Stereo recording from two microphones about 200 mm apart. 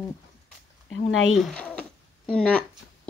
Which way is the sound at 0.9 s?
75° left (ahead or behind).